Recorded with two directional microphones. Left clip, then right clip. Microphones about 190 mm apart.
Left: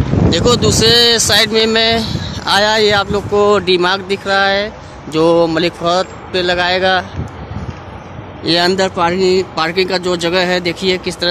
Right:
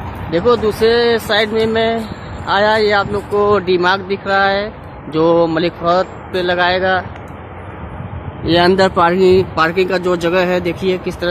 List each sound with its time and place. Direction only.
0.3 s speech: 20° left (ahead or behind)
8.5 s speech: 10° left (ahead or behind)
8.7 s speech: 15° right (ahead or behind); by 11.2 s 10° left (ahead or behind)